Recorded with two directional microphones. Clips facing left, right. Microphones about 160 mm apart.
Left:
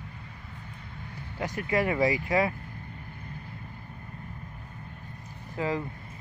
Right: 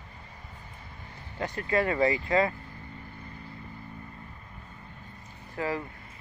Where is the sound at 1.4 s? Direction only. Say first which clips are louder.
Even; 15° left (ahead or behind).